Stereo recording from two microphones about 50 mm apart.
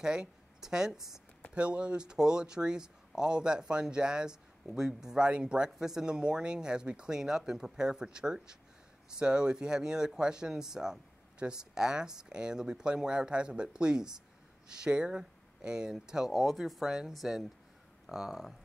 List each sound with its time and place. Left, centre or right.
0.0 s speech: centre
1.5 s speech: right; by 18.5 s centre